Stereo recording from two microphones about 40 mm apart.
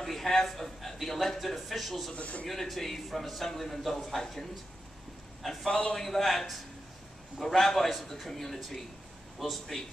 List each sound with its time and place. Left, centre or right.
0.0 s a man's voice: centre
2.1 s speech: left
2.4 s a man's voice: centre
5.7 s a man's voice: left
5.9 s a man's voice: centre